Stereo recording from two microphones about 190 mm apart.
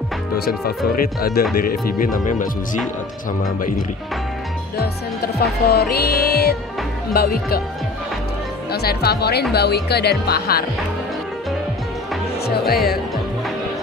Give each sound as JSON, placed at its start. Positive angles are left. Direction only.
{"t": 0.5, "sound": "speech", "side_deg": 50}
{"t": 4.7, "sound": "speech", "side_deg": 55}
{"t": 8.7, "sound": "speech", "side_deg": 55}
{"t": 12.4, "sound": "speech", "side_deg": 55}